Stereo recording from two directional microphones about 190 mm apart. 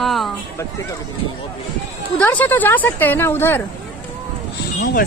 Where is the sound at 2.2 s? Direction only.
10° left (ahead or behind).